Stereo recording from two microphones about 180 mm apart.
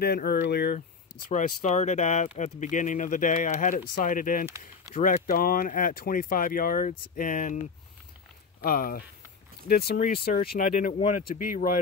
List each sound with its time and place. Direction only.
0.0 s speech: 60° left (ahead or behind)
1.3 s speech: 40° left (ahead or behind)
8.5 s speech: 55° left (ahead or behind)